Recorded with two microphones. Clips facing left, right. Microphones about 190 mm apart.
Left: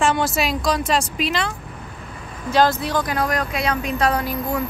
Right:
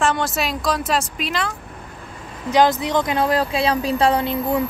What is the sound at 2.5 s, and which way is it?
Speech, 20° right (ahead or behind).